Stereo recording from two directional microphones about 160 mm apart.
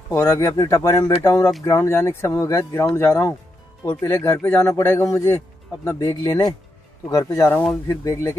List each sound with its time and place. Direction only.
0.1 s speech: 20° left (ahead or behind)